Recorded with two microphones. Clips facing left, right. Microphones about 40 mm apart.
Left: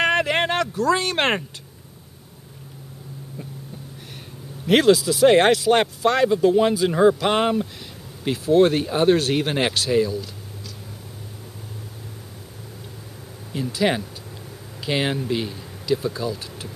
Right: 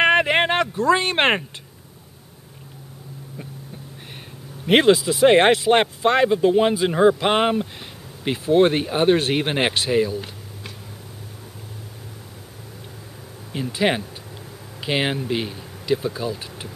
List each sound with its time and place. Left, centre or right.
0.0 s a sound: right
4.6 s speech: right
13.5 s speech: right